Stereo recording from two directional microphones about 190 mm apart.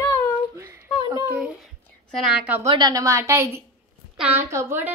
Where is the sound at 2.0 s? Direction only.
Centre (ahead or behind).